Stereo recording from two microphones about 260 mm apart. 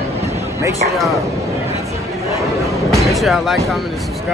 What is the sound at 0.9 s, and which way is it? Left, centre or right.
Speech, centre.